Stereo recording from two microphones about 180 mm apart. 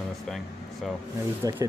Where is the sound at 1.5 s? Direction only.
20° right (ahead or behind).